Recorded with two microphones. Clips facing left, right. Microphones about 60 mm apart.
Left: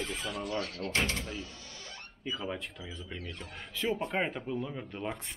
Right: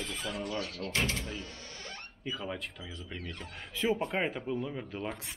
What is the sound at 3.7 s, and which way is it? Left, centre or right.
Speech, centre.